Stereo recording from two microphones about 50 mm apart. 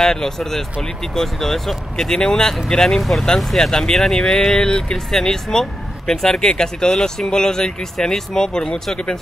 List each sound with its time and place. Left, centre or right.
0.0 s speech: centre
3.0 s speech: centre